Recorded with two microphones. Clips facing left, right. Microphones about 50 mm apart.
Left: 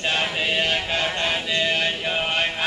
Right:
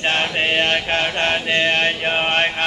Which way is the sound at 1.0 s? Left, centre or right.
Right.